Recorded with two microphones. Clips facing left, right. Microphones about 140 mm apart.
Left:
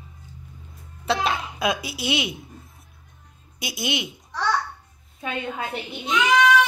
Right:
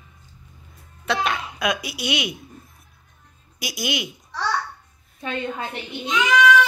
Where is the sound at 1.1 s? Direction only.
25° left (ahead or behind).